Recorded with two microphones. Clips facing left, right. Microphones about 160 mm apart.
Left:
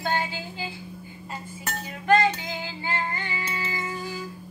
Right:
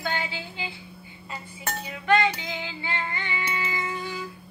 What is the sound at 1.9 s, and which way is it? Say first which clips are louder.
Female singing: left 2 dB; 40° left (ahead or behind).